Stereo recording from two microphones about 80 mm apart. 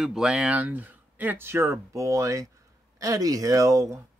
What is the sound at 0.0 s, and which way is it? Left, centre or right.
Speech, centre.